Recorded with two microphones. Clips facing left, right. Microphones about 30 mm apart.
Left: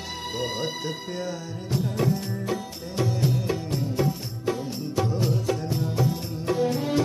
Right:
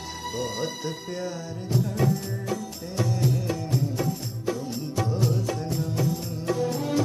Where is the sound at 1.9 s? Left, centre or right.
Left.